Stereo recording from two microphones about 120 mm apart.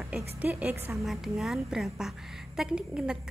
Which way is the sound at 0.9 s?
5° right (ahead or behind).